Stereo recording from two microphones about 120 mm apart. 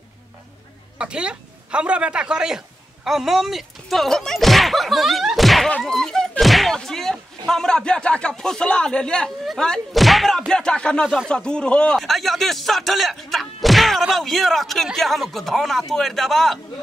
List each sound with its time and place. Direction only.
0.9 s speech: 10° right (ahead or behind)